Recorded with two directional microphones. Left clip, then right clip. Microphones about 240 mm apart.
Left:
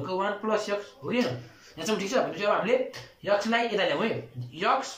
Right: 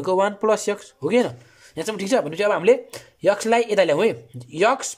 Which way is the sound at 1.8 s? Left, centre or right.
Right.